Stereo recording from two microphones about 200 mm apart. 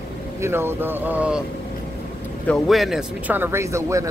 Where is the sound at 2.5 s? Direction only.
Centre (ahead or behind).